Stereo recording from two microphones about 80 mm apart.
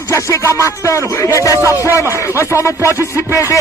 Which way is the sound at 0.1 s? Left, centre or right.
Left.